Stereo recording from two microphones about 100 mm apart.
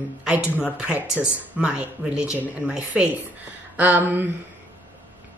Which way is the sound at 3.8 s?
15° right (ahead or behind).